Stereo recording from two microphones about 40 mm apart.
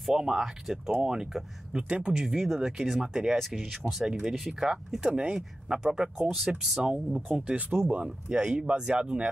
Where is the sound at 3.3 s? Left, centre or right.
Centre.